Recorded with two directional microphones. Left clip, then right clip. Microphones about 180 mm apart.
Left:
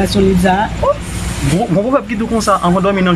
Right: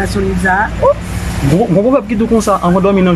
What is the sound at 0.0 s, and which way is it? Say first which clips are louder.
Speech: left 2 dB; 20° left (ahead or behind).